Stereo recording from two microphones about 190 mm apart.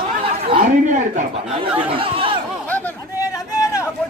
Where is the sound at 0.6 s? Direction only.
45° right (ahead or behind).